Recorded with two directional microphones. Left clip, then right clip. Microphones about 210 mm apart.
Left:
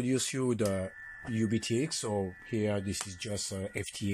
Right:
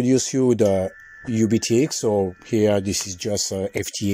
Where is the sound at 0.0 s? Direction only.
30° right (ahead or behind).